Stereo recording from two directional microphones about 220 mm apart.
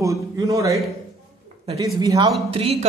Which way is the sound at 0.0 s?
15° right (ahead or behind).